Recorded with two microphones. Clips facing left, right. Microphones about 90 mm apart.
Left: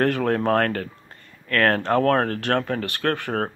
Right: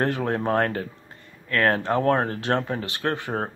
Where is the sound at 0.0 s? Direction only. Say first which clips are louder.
Left 3 dB; 20° right (ahead or behind).